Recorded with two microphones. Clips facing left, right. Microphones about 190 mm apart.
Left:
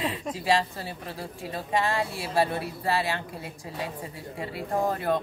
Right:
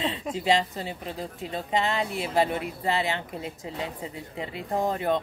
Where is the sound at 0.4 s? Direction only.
20° right (ahead or behind).